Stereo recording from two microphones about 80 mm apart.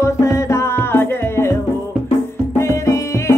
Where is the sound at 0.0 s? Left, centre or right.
Left.